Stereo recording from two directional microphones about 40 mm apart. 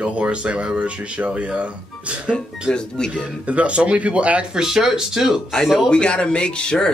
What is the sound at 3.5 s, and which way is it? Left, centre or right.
Speech, right.